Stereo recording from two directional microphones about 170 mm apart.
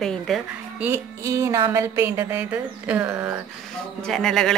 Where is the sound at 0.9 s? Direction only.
15° right (ahead or behind).